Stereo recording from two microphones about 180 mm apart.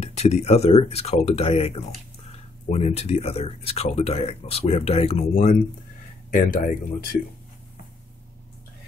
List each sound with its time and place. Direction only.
0.0 s speech: 35° left (ahead or behind)
6.3 s speech: 50° left (ahead or behind)